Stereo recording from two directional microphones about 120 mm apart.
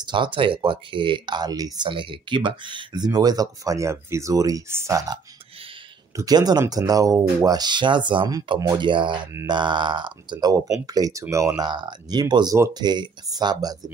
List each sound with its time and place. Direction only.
0.0 s speech: 40° right (ahead or behind)
1.9 s speech: 45° right (ahead or behind)